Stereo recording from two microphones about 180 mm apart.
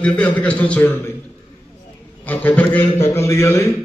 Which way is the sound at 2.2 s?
10° left (ahead or behind).